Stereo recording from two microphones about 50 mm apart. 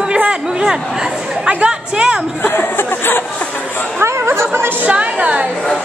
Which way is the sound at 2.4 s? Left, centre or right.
Left.